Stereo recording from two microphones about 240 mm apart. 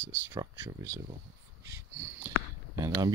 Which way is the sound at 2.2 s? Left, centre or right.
Centre.